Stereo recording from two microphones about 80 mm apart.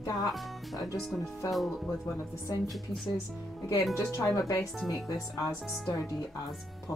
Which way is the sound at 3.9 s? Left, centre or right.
Left.